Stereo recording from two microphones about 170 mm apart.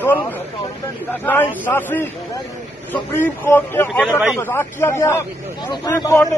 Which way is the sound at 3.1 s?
15° left (ahead or behind).